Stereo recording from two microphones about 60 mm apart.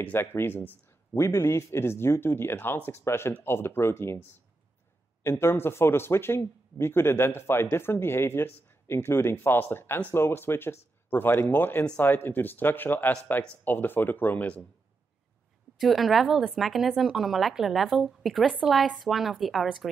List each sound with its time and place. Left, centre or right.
0.0 s speech: left
1.1 s speech: left
15.8 s speech: centre